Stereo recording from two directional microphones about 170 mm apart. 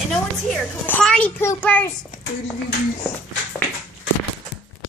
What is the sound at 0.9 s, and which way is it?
A child's voice, 5° left (ahead or behind).